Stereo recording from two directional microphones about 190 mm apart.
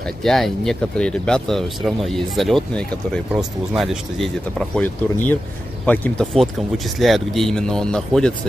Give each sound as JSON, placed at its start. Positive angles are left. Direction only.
{"t": 0.0, "sound": "speech", "side_deg": 0}